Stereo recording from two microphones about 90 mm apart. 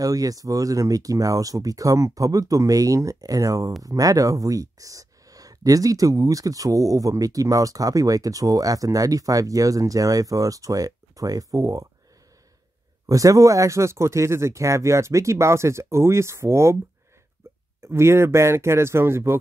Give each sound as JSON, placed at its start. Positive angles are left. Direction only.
{"t": 0.0, "sound": "speech", "side_deg": -40}
{"t": 13.0, "sound": "speech", "side_deg": -40}
{"t": 17.7, "sound": "speech", "side_deg": -30}